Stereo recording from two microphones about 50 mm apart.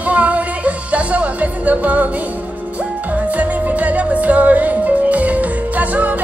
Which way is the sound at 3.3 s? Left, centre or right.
Right.